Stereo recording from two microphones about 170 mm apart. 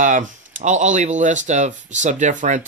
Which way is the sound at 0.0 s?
50° right (ahead or behind).